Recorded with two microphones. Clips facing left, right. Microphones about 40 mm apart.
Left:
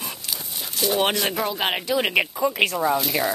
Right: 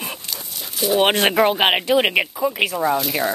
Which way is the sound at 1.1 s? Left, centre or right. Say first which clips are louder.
Right 8 dB; right.